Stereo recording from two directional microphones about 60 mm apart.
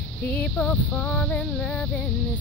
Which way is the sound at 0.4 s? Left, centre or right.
Centre.